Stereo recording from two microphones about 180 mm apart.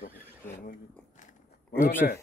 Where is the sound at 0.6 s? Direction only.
45° left (ahead or behind).